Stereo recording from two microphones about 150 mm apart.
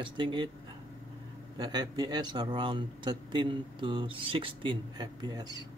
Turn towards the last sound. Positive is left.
turn(degrees=-25)  # may be behind; listen again after turning